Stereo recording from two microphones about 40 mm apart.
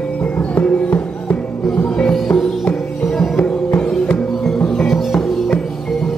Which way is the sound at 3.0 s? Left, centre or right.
Centre.